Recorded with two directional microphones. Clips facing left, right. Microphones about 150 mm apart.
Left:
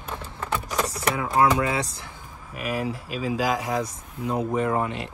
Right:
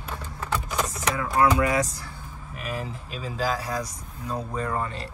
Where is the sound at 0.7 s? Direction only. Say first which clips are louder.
Left 2 dB; 35° left (ahead or behind).